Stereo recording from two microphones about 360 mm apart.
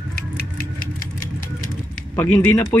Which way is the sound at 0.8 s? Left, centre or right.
Left.